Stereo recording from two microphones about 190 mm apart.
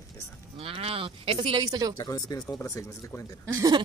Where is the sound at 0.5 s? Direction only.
30° right (ahead or behind).